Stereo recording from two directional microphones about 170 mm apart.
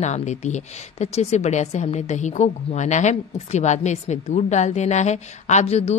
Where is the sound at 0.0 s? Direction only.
40° left (ahead or behind).